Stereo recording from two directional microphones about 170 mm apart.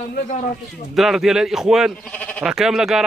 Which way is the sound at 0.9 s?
Centre (ahead or behind).